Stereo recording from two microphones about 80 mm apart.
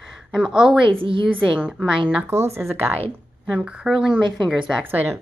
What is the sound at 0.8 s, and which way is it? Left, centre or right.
Speech, right.